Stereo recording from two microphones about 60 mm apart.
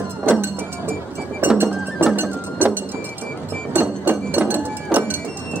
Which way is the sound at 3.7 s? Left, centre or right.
Right.